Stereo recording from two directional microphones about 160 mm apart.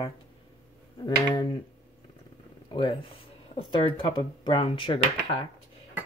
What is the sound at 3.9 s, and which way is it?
Speech, 30° left (ahead or behind).